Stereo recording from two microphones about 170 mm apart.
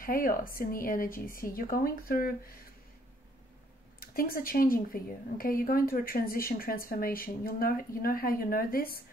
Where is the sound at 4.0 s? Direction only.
60° left (ahead or behind).